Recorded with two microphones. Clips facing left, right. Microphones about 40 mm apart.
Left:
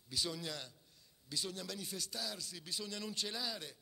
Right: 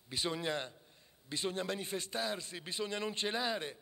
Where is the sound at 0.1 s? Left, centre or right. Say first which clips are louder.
Right 5 dB; right.